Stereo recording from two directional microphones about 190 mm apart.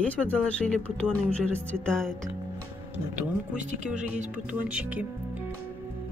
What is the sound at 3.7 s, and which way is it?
Speech, 40° right (ahead or behind).